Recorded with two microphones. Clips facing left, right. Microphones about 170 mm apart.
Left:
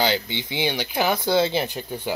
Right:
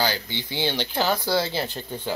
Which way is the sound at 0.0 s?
20° left (ahead or behind).